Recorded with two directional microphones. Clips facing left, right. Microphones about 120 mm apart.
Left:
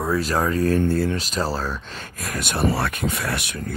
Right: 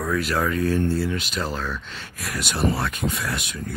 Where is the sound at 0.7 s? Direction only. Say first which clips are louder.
Left 2 dB; 55° left (ahead or behind).